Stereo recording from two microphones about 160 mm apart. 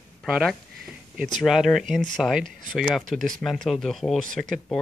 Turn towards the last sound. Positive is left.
turn(degrees=0)  # may be behind; listen again after turning